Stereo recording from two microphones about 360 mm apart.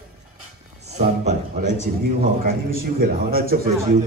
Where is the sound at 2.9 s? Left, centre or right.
Right.